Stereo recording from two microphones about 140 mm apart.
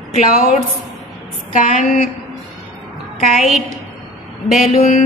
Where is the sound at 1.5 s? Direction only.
75° left (ahead or behind).